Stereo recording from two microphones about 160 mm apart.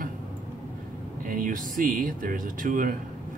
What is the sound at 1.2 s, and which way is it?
A man's voice, 60° right (ahead or behind).